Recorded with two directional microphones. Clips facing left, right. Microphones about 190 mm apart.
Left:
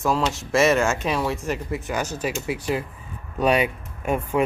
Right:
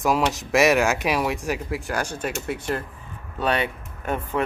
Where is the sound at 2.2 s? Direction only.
5° left (ahead or behind).